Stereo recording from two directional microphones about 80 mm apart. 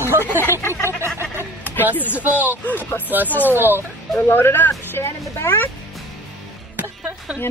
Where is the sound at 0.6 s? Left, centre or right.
Left.